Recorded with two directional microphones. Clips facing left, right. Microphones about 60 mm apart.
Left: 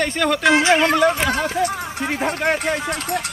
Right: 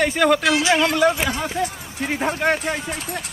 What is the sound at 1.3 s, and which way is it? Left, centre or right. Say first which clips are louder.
Speech: left 4 dB; left.